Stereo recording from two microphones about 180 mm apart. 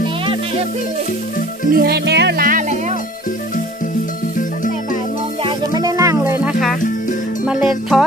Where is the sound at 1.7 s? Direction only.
60° right (ahead or behind).